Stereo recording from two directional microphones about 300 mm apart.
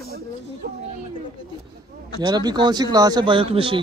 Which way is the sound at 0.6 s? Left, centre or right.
Right.